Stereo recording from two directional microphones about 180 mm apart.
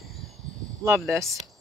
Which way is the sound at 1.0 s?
15° right (ahead or behind).